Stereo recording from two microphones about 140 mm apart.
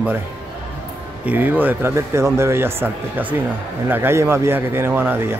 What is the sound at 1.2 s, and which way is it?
Speech, 15° right (ahead or behind).